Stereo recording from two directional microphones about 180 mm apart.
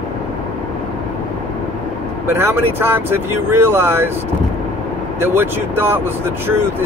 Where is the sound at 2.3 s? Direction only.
10° right (ahead or behind).